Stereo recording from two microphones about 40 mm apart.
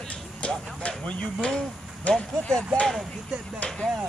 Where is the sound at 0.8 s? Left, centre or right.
Left.